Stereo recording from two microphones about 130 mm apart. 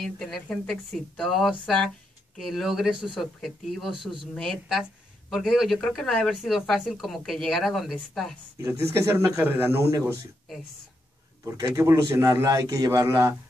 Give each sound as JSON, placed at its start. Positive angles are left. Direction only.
{"t": 0.0, "sound": "speech", "side_deg": 5}
{"t": 8.5, "sound": "a man's voice", "side_deg": -20}
{"t": 11.4, "sound": "a man's voice", "side_deg": -25}